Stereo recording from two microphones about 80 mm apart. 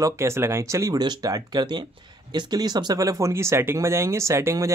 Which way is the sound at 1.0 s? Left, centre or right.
Right.